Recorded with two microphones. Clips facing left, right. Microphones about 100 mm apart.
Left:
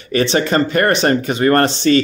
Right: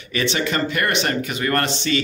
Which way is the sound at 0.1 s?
35° left (ahead or behind).